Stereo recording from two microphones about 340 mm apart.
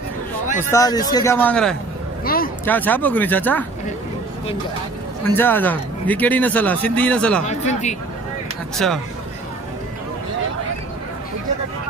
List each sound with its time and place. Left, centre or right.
0.7 s a man's voice: centre
2.2 s speech: left
2.6 s speech: centre
5.3 s speech: centre
7.4 s speech: left
8.7 s speech: centre